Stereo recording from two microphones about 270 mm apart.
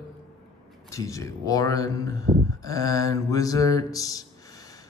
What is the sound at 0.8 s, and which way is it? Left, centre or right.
Speech, centre.